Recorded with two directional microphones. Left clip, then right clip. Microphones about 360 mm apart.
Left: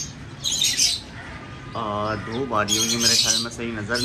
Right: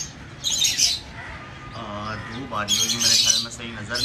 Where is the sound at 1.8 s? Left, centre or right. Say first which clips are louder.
Left 7 dB; centre.